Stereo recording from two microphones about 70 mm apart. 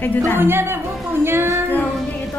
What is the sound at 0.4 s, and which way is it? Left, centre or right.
Speech, right.